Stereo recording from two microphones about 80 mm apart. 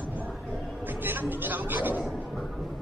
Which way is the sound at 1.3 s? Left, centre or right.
Right.